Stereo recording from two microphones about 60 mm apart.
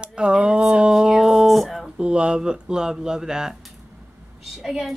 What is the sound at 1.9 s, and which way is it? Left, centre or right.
Speech, centre.